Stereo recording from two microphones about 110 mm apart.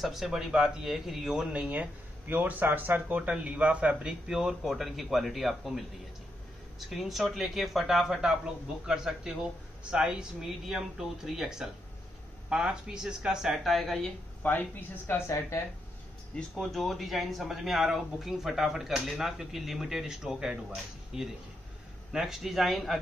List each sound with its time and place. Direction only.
0.0 s speech: 5° right (ahead or behind)
6.9 s speech: centre (ahead or behind)
14.4 s speech: 15° left (ahead or behind)
16.3 s speech: centre (ahead or behind)